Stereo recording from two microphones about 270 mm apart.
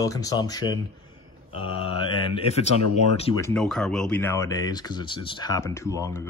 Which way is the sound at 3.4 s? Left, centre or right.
Centre.